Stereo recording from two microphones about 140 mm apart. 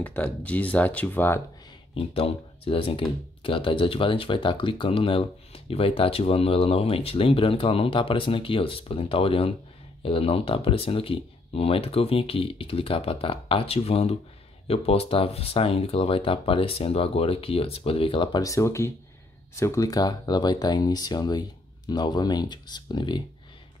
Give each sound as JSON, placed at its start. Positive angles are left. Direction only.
{"t": 0.0, "sound": "speech", "side_deg": 10}
{"t": 2.0, "sound": "speech", "side_deg": 45}
{"t": 18.4, "sound": "speech", "side_deg": 20}